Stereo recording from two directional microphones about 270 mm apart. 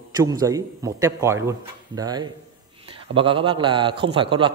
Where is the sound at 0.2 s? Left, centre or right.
Centre.